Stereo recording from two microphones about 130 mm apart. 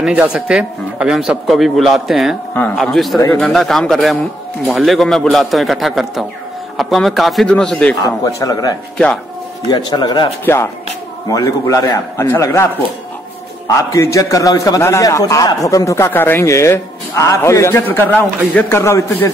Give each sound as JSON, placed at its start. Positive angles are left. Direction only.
{"t": 0.0, "sound": "speech", "side_deg": -10}
{"t": 8.0, "sound": "a man's voice", "side_deg": 25}
{"t": 8.9, "sound": "speech", "side_deg": 5}
{"t": 9.7, "sound": "speech", "side_deg": 35}
{"t": 10.4, "sound": "a man's voice", "side_deg": 20}
{"t": 13.9, "sound": "a man's voice", "side_deg": 25}